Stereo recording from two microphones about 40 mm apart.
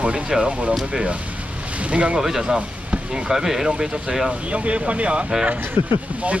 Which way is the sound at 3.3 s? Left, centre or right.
Centre.